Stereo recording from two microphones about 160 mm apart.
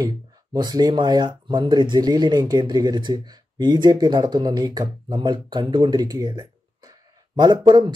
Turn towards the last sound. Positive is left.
turn(degrees=-30)  # may be behind; listen again after turning